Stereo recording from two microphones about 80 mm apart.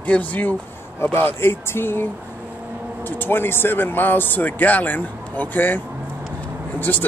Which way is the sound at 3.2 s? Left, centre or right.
Left.